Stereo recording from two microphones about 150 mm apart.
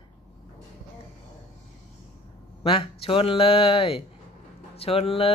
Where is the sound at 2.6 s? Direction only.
40° left (ahead or behind).